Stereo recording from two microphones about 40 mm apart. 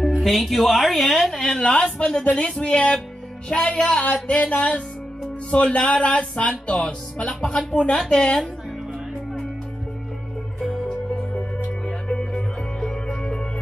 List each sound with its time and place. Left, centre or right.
0.2 s a woman's voice: centre
1.6 s speech: left
4.0 s speech: left; by 8.4 s centre
10.7 s music: centre
11.8 s music: centre